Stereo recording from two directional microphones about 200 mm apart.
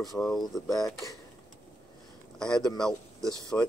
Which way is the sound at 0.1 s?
Centre (ahead or behind).